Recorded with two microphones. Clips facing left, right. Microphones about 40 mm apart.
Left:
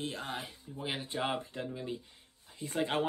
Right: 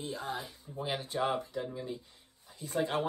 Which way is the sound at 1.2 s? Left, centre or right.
Left.